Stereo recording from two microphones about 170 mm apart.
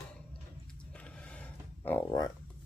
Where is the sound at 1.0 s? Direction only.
5° left (ahead or behind).